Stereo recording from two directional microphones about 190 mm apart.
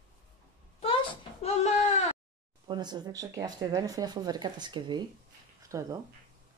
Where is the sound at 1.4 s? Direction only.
35° left (ahead or behind).